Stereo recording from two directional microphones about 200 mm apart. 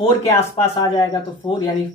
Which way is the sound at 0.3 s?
20° left (ahead or behind).